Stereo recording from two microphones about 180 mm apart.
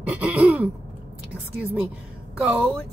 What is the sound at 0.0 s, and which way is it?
Speech, 5° right (ahead or behind).